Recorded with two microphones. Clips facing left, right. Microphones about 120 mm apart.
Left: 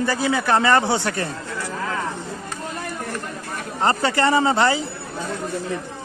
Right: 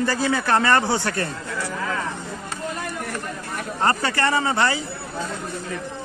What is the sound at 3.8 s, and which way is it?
Speech, 20° left (ahead or behind).